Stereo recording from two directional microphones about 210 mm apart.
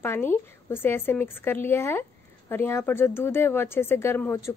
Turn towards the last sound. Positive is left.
turn(degrees=10)  # may be behind; listen again after turning